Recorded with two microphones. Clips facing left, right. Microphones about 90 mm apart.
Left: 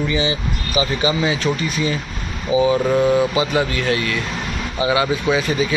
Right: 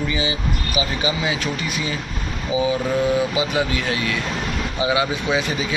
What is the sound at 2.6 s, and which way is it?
Speech, 55° left (ahead or behind).